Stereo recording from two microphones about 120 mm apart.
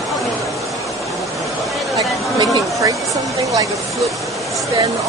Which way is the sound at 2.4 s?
30° right (ahead or behind).